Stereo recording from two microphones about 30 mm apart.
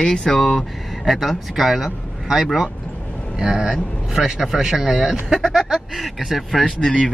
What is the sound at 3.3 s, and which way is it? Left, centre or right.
Speech, right.